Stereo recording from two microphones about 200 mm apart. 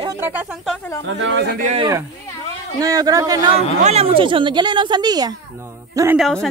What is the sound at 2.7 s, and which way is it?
Speech, 20° right (ahead or behind).